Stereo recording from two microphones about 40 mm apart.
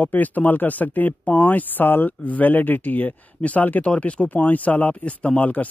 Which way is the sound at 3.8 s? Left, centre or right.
Left.